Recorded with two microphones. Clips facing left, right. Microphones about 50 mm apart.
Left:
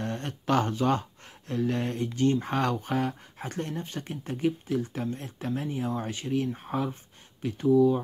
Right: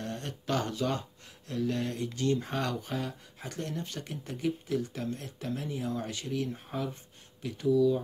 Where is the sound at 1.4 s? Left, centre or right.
Left.